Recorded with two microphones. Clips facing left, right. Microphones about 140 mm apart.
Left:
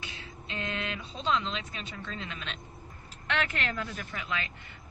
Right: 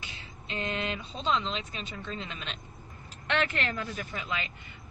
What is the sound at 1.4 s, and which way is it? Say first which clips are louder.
Speech: right 1 dB; 20° right (ahead or behind).